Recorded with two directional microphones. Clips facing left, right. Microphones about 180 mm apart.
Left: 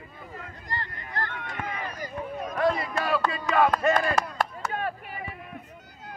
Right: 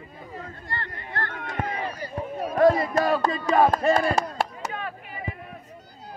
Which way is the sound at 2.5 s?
45° right (ahead or behind).